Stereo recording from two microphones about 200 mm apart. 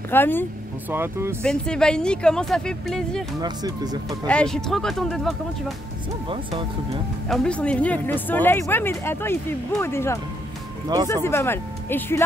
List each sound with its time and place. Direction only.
0.1 s speech: 10° left (ahead or behind)
0.8 s speech: 10° right (ahead or behind)
1.4 s a woman's voice: 5° left (ahead or behind)
3.3 s speech: 20° right (ahead or behind)
4.3 s a woman's voice: 5° left (ahead or behind)
6.2 s speech: 25° right (ahead or behind)
7.2 s speech: 5° left (ahead or behind)
11.2 s speech: 10° left (ahead or behind)